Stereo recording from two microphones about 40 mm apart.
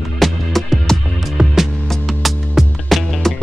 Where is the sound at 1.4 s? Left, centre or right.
Right.